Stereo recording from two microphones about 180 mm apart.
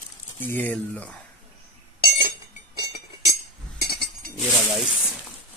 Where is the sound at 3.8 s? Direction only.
60° left (ahead or behind).